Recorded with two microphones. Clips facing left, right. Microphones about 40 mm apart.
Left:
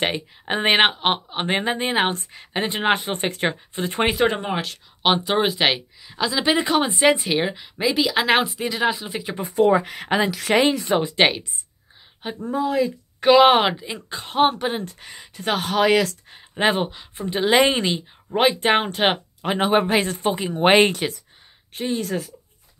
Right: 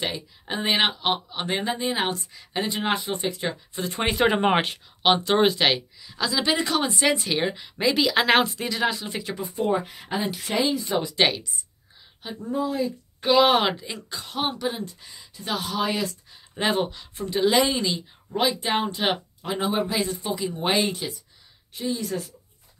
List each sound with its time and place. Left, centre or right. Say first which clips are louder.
0.0 s speech: left 6 dB; left
4.1 s speech: right 1 dB; centre
4.4 s speech: right 5 dB; right
5.0 s speech: even; centre; by 7.3 s left
7.3 s speech: left 3 dB; centre
9.6 s speech: left 8 dB; left
11.0 s speech: left 4 dB; left
12.4 s speech: left 4 dB; left
13.4 s speech: left 3 dB; left
13.7 s speech: left 3 dB; left
15.8 s speech: left 10 dB; left
16.3 s speech: left 5 dB; left